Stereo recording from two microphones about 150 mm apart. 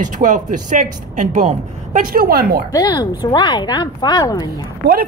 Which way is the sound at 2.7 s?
25° left (ahead or behind).